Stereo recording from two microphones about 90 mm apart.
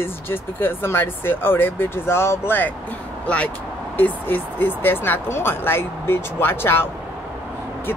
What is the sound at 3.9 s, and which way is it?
Speech, 20° left (ahead or behind).